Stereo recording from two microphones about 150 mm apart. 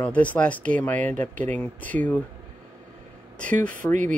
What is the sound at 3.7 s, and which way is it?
Speech, 55° right (ahead or behind).